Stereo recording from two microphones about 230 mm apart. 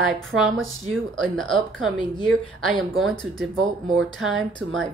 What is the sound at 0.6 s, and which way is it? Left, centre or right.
Speech, right.